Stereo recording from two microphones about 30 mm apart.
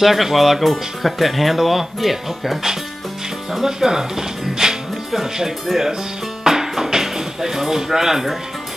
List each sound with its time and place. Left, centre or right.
0.0 s speech: centre
6.4 s music: centre
6.9 s a sound: centre